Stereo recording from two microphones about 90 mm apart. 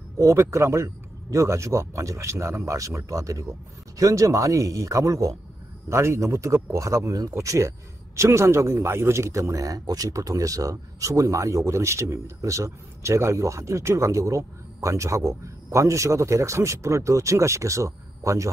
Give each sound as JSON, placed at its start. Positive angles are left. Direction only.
{"t": 0.2, "sound": "a man's voice", "side_deg": -35}